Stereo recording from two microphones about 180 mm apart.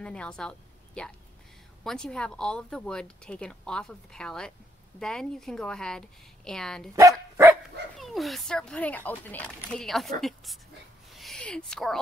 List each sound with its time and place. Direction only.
0.0 s a woman's voice: 5° left (ahead or behind)
7.0 s dog: 15° right (ahead or behind)
8.0 s speech: centre (ahead or behind)
11.1 s a sound: centre (ahead or behind)